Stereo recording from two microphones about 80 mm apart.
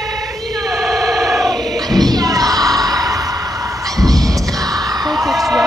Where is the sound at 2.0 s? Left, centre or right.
Right.